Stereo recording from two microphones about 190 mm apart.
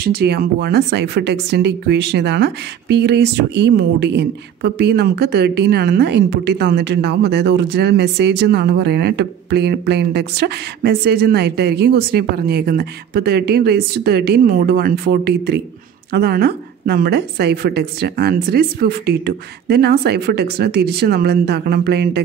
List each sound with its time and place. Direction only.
0.0 s speech: 55° right (ahead or behind)